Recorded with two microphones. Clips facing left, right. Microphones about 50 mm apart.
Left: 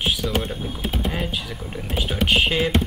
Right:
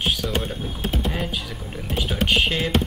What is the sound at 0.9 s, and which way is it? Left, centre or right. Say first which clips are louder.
Speech: even; centre.